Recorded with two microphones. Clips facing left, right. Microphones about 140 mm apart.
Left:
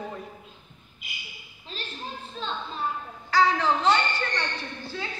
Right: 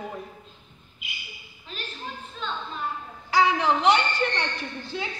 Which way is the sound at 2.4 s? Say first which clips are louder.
Right 1 dB; 35° left (ahead or behind).